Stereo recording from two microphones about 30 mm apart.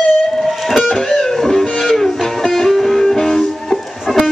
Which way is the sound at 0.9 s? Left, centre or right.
Centre.